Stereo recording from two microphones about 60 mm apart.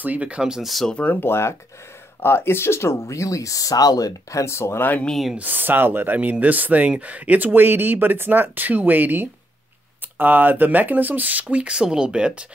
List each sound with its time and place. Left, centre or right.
0.0 s speech: right; by 0.8 s centre
1.0 s speech: left
5.4 s speech: right
11.4 s speech: centre